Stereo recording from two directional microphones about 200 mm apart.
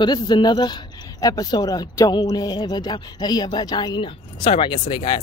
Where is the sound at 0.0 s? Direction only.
20° left (ahead or behind).